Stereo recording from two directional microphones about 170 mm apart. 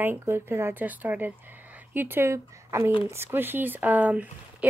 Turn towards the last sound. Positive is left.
turn(degrees=-10)  # may be behind; listen again after turning